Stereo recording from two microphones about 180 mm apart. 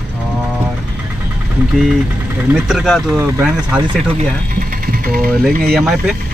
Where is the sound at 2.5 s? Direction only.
Centre (ahead or behind).